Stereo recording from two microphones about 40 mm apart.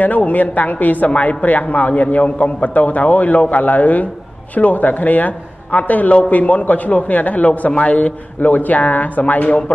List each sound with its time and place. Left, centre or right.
0.0 s a man's voice: left
8.4 s speech: left